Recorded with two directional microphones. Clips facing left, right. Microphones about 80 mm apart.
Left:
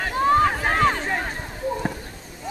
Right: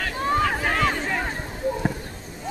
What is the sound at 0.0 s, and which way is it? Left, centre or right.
Vehicle, left.